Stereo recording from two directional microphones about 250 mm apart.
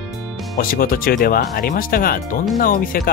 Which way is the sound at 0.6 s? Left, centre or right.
Left.